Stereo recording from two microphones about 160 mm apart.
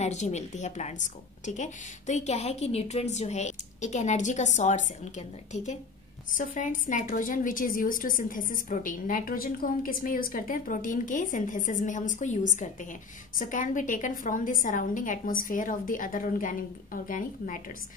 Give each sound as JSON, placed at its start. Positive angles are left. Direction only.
{"t": 0.0, "sound": "a woman's voice", "side_deg": 45}
{"t": 6.3, "sound": "a woman's voice", "side_deg": 55}